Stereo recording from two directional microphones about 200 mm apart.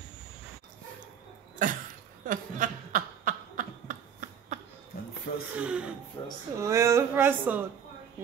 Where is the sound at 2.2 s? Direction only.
40° right (ahead or behind).